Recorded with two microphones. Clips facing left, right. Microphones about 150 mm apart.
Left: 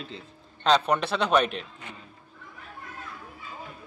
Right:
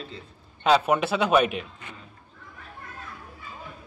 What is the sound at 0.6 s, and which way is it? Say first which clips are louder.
Speech: right 2 dB; 5° right (ahead or behind).